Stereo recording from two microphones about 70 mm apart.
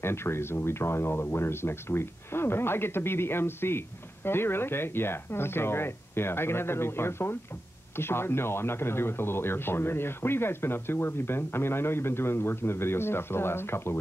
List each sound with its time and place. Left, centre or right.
0.0 s speech: left